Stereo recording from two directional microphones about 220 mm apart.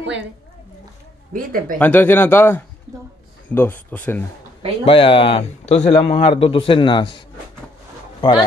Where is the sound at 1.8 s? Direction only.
10° left (ahead or behind).